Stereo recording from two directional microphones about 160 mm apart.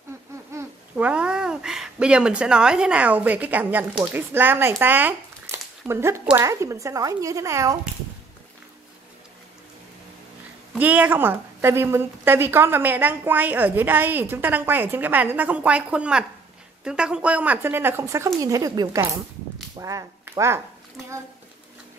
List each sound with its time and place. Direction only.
0.5 s a child's voice: 15° right (ahead or behind)
10.8 s a woman's voice: 10° right (ahead or behind)